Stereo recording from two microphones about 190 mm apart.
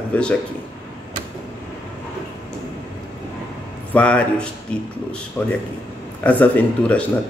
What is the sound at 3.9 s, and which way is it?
Speech, 5° left (ahead or behind).